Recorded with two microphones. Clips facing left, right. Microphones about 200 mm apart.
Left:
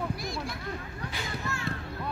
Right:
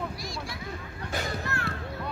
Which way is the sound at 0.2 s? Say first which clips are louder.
Left 2 dB; 55° left (ahead or behind).